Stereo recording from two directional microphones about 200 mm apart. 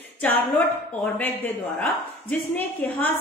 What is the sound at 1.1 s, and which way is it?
A woman's voice, 10° left (ahead or behind).